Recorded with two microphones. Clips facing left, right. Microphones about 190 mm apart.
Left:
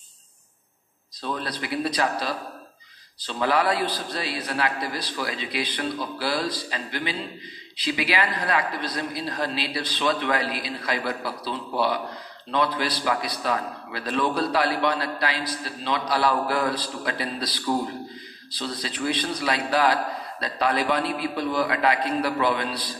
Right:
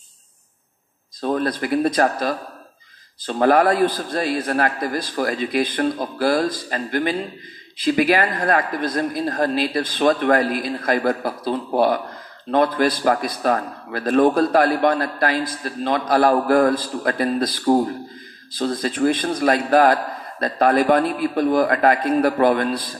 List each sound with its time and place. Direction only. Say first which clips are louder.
1.2 s a man's voice: right 9 dB; 50° right (ahead or behind)